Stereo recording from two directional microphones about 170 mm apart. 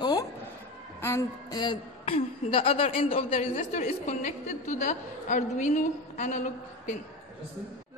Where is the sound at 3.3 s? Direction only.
45° left (ahead or behind).